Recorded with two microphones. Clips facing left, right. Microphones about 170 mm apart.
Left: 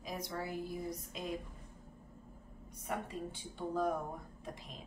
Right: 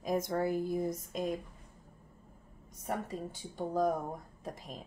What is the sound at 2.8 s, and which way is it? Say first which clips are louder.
A woman's voice: right 3 dB; 40° right (ahead or behind).